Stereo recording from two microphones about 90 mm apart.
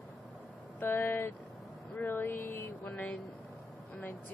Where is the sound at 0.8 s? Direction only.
20° left (ahead or behind).